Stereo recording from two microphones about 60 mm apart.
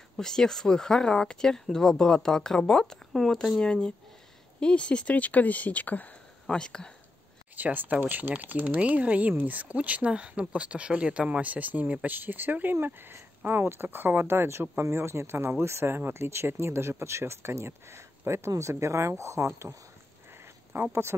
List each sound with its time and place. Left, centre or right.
0.2 s speech: centre
3.1 s speech: centre; by 6.1 s left
6.5 s speech: centre
7.5 s speech: right
20.7 s speech: right